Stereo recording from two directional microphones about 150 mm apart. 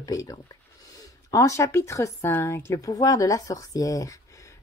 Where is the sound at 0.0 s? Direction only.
25° left (ahead or behind).